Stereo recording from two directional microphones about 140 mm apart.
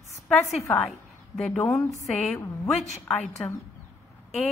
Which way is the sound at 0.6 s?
15° left (ahead or behind).